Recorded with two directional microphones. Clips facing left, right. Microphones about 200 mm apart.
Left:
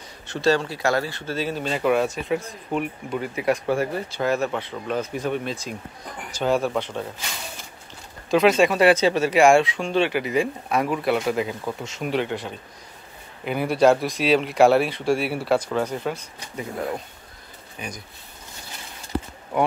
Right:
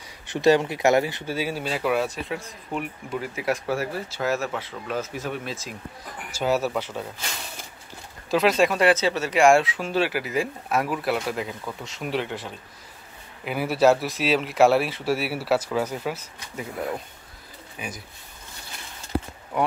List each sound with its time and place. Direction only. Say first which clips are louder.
0.3 s speech: right 2 dB; 15° right (ahead or behind)
8.3 s speech: left 3 dB; centre (ahead or behind)
8.8 s speech: left 3 dB; 15° left (ahead or behind); by 16.6 s 5° right (ahead or behind)
17.7 s speech: left 1 dB; 5° right (ahead or behind)